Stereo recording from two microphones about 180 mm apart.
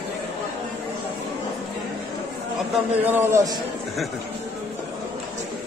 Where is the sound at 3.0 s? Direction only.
10° right (ahead or behind).